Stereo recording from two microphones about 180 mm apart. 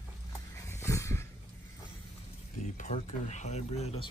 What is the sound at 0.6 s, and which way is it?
Dog, 15° left (ahead or behind).